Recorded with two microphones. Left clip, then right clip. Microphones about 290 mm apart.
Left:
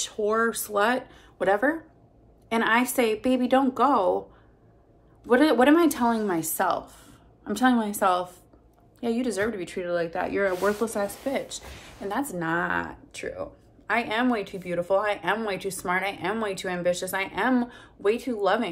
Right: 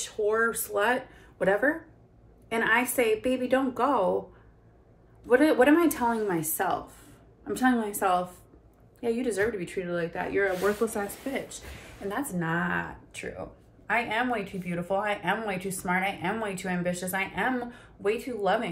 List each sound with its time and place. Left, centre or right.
0.0 s speech: centre
5.2 s speech: centre